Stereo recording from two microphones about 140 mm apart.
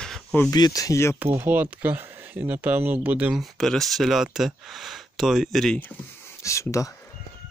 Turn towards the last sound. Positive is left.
turn(degrees=20)  # may be behind; listen again after turning